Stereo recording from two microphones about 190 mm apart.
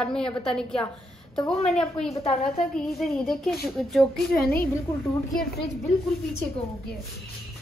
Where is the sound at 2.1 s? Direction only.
30° left (ahead or behind).